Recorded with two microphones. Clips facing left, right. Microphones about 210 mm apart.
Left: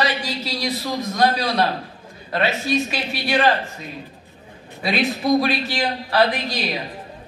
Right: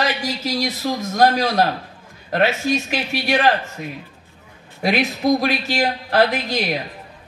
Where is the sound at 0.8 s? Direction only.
45° right (ahead or behind).